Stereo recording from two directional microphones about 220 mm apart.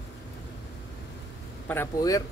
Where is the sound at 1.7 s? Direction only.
10° left (ahead or behind).